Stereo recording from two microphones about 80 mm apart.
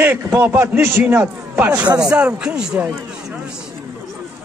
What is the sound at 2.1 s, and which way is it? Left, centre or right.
Speech, centre.